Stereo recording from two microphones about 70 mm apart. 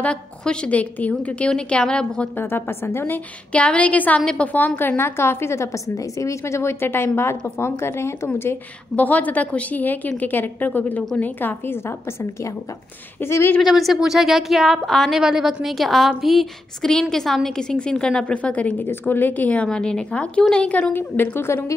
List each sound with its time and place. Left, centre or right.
0.0 s a woman's voice: centre
2.3 s a woman's voice: left
3.5 s a woman's voice: centre
4.5 s a woman's voice: left
6.4 s a woman's voice: left
8.9 s a woman's voice: left
13.6 s a woman's voice: centre
20.9 s a woman's voice: left